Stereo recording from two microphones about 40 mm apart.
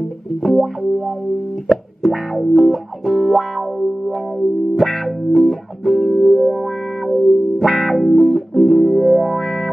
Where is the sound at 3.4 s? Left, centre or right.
Centre.